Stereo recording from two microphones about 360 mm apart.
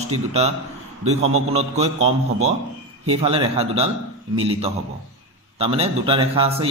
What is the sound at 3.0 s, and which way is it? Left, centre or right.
A man's voice, centre.